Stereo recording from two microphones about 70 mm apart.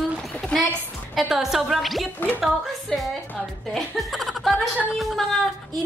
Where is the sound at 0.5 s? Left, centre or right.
Centre.